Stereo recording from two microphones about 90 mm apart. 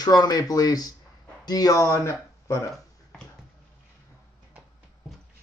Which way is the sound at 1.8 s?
30° left (ahead or behind).